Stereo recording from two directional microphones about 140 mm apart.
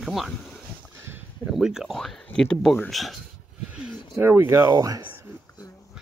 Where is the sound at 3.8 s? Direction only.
15° right (ahead or behind).